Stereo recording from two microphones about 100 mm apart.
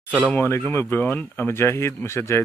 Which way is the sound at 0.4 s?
25° left (ahead or behind).